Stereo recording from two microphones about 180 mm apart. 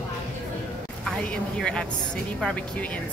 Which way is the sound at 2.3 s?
5° left (ahead or behind).